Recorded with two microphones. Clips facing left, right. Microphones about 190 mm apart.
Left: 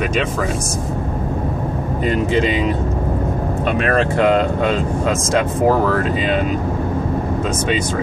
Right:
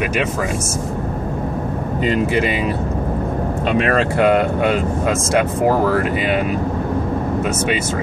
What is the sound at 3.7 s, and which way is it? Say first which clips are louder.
Speech: right 1 dB; 20° right (ahead or behind).